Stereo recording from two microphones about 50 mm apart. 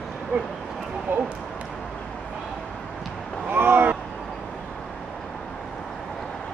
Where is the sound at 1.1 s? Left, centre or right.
Right.